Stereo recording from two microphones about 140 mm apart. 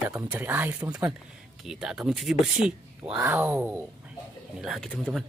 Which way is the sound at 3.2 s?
15° right (ahead or behind).